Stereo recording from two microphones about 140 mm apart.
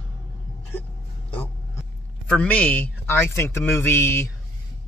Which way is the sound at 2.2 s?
10° left (ahead or behind).